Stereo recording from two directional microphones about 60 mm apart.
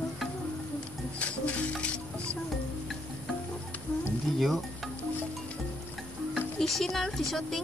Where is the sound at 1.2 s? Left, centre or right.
Left.